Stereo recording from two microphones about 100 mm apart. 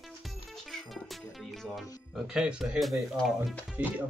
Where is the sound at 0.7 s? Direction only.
Centre (ahead or behind).